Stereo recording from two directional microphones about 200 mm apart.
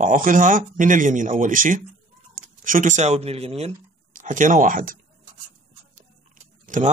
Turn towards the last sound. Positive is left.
turn(degrees=-40)  # may be behind; listen again after turning